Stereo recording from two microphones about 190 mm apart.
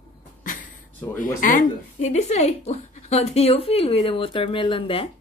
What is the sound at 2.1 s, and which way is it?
Speech, 35° left (ahead or behind).